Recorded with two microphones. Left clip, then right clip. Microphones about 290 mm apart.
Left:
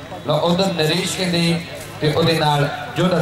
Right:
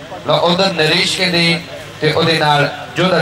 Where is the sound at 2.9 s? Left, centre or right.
Centre.